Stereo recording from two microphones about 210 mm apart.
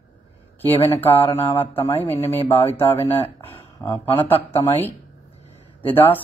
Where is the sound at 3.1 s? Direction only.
15° left (ahead or behind).